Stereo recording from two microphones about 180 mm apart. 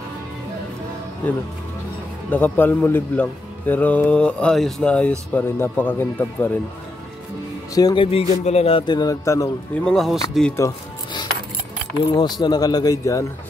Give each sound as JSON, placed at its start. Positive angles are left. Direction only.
{"t": 2.3, "sound": "speech", "side_deg": 10}
{"t": 7.7, "sound": "a man's voice", "side_deg": 25}
{"t": 9.8, "sound": "speech", "side_deg": 0}
{"t": 12.1, "sound": "a man's voice", "side_deg": 25}